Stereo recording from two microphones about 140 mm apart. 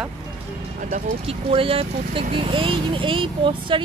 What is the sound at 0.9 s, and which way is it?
Speech, 45° right (ahead or behind).